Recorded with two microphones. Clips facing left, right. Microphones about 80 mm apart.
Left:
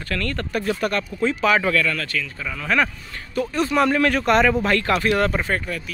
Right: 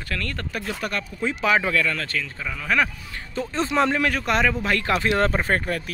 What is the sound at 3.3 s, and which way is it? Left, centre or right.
Speech, right.